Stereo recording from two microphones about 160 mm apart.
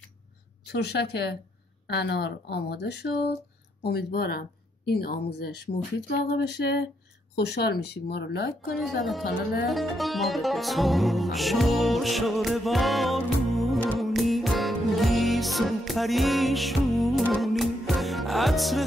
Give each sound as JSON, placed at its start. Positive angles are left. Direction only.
{"t": 0.7, "sound": "speech", "side_deg": 90}
{"t": 9.7, "sound": "music", "side_deg": 0}